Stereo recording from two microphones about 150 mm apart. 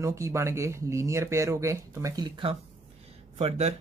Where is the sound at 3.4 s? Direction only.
50° right (ahead or behind).